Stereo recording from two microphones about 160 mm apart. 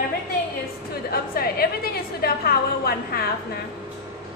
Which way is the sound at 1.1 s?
70° left (ahead or behind).